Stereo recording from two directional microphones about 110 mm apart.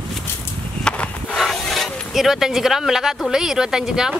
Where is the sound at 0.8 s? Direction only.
5° left (ahead or behind).